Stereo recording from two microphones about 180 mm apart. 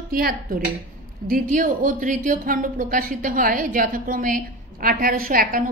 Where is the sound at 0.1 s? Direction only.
55° right (ahead or behind).